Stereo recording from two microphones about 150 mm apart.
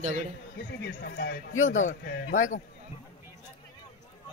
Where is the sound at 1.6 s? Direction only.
55° left (ahead or behind).